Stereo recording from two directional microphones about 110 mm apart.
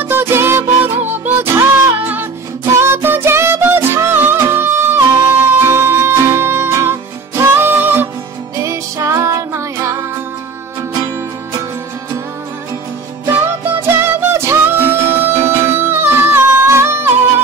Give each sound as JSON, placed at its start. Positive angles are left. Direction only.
{"t": 0.0, "sound": "music", "side_deg": -20}
{"t": 13.8, "sound": "music", "side_deg": -20}